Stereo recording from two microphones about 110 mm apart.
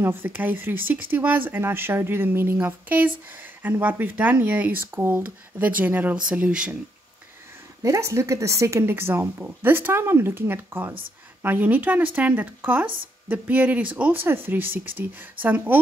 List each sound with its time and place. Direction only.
0.0 s speech: 20° right (ahead or behind)
7.8 s speech: 25° right (ahead or behind)